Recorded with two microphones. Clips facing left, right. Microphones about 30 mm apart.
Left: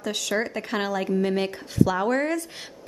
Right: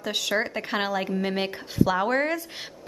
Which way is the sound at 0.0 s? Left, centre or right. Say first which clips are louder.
Even; centre.